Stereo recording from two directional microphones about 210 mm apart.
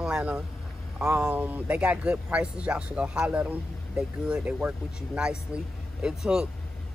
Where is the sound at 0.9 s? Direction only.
5° right (ahead or behind).